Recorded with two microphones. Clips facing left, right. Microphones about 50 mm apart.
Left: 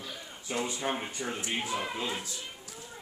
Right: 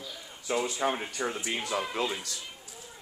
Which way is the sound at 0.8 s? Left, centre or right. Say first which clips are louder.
Right 4 dB; right.